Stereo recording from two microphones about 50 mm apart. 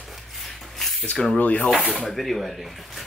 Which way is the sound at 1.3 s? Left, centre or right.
Left.